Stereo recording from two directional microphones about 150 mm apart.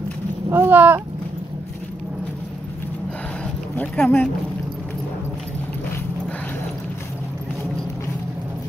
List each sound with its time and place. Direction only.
0.5 s speech: 15° right (ahead or behind)
3.7 s speech: 10° left (ahead or behind)